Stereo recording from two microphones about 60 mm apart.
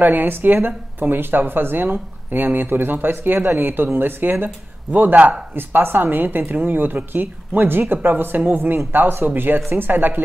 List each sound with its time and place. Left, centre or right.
0.0 s a man's voice: right
5.5 s speech: right